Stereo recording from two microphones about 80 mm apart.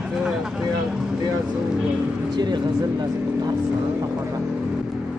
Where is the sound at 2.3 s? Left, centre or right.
Right.